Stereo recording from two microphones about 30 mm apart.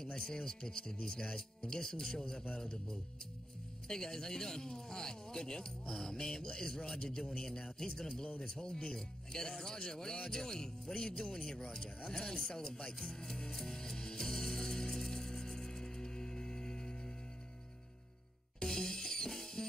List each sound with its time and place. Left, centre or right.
0.0 s speech: left
13.7 s music: left
18.6 s music: centre